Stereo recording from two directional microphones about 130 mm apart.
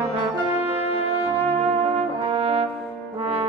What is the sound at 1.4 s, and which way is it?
Brass instrument, 50° right (ahead or behind).